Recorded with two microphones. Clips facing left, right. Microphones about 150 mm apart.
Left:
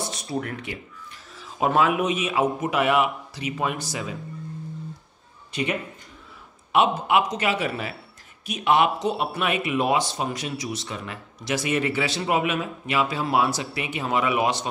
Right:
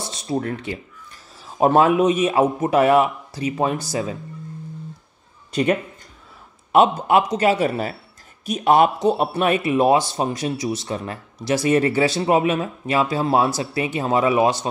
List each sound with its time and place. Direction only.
0.0 s speech: 30° right (ahead or behind)
5.5 s speech: 45° right (ahead or behind)